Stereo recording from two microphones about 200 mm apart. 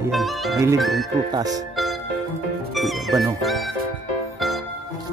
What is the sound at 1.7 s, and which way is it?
Music, centre (ahead or behind).